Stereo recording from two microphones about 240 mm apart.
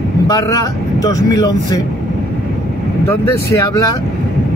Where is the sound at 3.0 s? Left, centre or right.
Centre.